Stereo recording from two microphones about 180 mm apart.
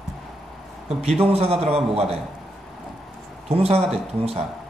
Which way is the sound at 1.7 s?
35° right (ahead or behind).